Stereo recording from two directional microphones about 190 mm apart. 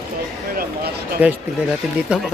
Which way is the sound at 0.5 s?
50° right (ahead or behind).